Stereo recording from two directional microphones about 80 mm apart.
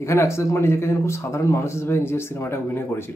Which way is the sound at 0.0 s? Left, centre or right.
Left.